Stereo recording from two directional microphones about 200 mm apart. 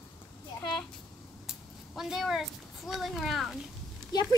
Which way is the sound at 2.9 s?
Centre (ahead or behind).